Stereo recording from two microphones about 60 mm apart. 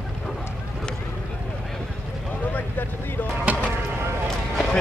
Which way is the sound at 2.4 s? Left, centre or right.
Left.